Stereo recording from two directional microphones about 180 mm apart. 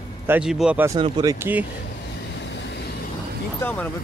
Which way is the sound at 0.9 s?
25° right (ahead or behind).